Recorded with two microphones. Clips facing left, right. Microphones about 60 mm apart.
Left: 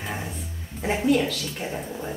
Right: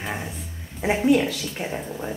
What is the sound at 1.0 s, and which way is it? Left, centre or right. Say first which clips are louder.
Speech: right 2 dB; right.